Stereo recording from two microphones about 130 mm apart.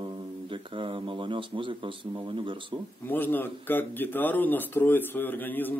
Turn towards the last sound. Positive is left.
turn(degrees=15)  # may be behind; listen again after turning